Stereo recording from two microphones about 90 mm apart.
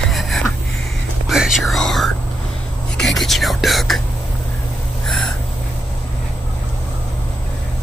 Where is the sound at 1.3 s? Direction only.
5° right (ahead or behind).